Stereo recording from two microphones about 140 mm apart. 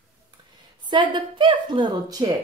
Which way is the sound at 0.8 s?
35° right (ahead or behind).